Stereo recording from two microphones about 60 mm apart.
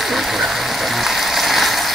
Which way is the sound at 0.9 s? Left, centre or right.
Centre.